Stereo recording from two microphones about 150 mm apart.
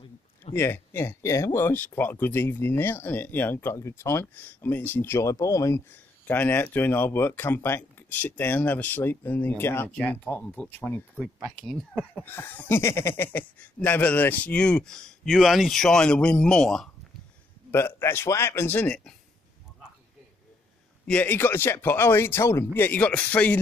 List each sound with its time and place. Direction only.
0.5 s speech: 15° left (ahead or behind)
11.3 s speech: centre (ahead or behind)
17.6 s speech: 15° left (ahead or behind)
21.1 s speech: 10° left (ahead or behind)